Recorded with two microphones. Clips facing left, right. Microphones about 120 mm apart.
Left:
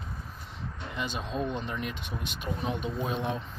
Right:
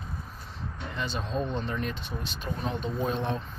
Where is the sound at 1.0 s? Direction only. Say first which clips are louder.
Right 1 dB; 15° left (ahead or behind).